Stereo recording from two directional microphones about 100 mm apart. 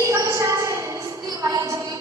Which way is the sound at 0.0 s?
30° right (ahead or behind).